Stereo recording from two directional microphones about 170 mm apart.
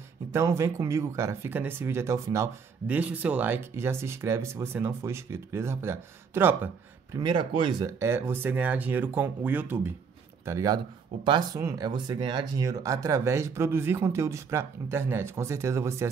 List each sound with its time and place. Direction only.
0.3 s speech: 15° right (ahead or behind)
7.2 s speech: 25° right (ahead or behind)
8.0 s speech: 15° right (ahead or behind)